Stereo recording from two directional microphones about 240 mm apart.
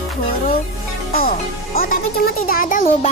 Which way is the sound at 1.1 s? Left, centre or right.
Left.